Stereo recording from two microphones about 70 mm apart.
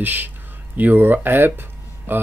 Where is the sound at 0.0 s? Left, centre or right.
Right.